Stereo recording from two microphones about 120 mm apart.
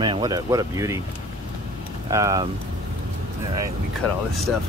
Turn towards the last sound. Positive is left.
turn(degrees=5)  # may be behind; listen again after turning